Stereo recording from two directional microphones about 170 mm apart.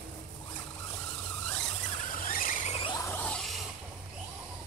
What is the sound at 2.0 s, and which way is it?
Squeal, 55° left (ahead or behind).